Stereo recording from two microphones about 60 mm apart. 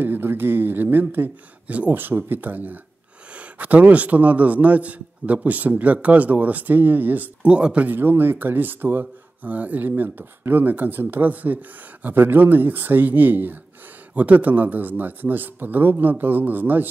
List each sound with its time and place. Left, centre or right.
0.0 s a man's voice: right
7.4 s a man's voice: centre
7.9 s speech: right